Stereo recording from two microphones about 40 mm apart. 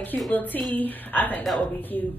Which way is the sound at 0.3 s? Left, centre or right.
Left.